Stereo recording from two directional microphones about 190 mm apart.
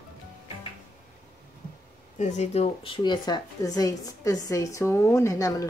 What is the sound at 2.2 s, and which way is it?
Speech, 35° left (ahead or behind).